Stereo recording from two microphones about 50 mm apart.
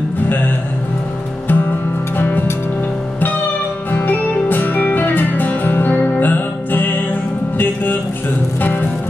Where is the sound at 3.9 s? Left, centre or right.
Left.